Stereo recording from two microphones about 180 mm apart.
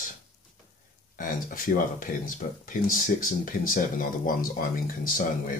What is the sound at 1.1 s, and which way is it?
Speech, 50° left (ahead or behind).